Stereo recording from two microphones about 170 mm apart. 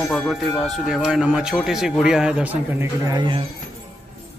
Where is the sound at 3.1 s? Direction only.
30° right (ahead or behind).